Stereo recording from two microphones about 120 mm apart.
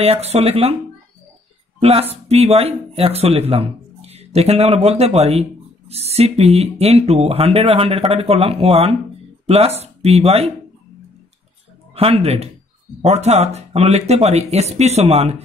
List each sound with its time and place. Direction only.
0.0 s speech: 60° right (ahead or behind)
1.8 s speech: 55° right (ahead or behind)
11.9 s speech: 55° right (ahead or behind)